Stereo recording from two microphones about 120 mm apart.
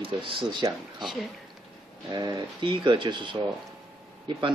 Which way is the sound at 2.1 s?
35° right (ahead or behind).